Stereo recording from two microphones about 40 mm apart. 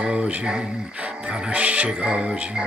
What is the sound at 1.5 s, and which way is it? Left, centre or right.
Music, right.